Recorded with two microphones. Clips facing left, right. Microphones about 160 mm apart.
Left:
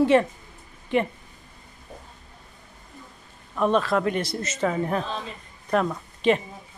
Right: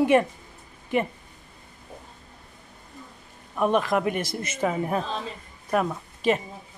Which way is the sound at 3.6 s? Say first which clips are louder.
Left 1 dB; 15° right (ahead or behind).